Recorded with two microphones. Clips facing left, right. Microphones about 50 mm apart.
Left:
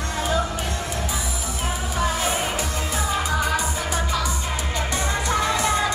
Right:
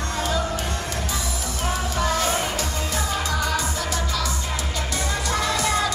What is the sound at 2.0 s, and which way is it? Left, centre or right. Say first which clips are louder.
Music: even; centre.